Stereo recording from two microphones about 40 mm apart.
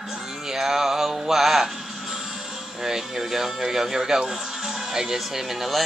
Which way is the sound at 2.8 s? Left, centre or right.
Centre.